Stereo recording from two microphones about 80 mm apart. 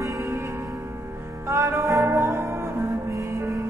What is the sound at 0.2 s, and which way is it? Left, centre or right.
Music, right.